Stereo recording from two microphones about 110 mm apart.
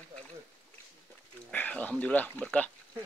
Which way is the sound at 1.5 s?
10° left (ahead or behind).